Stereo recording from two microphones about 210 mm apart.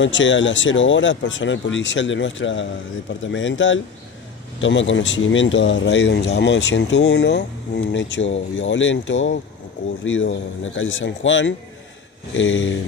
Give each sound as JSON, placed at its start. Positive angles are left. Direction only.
{"t": 0.0, "sound": "speech", "side_deg": 60}